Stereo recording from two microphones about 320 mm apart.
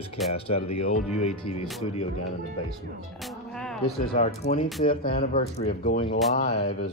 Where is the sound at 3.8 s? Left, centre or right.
Left.